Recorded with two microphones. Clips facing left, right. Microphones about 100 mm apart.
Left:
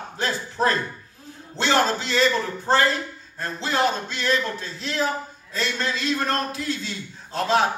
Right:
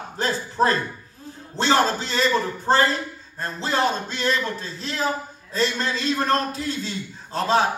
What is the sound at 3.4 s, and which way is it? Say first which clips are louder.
A man's voice: even; 40° right (ahead or behind).